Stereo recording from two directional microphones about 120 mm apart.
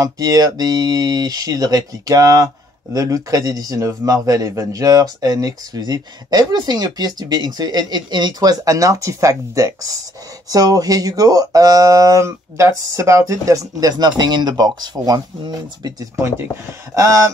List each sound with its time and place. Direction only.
0.0 s speech: 30° right (ahead or behind)